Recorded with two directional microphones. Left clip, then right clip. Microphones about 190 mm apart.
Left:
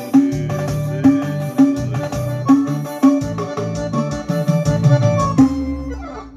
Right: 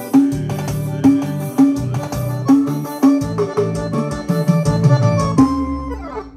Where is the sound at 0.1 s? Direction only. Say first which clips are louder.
Even; 40° right (ahead or behind).